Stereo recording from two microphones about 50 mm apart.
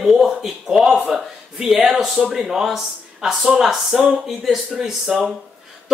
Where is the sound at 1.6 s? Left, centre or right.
Centre.